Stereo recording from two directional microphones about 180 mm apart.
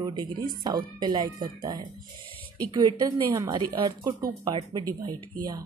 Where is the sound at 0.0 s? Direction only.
25° right (ahead or behind).